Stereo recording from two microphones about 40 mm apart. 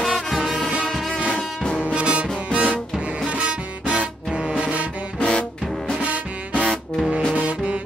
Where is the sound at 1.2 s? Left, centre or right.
Left.